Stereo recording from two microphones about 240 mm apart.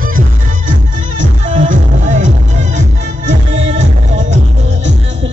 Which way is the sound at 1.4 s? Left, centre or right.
Right.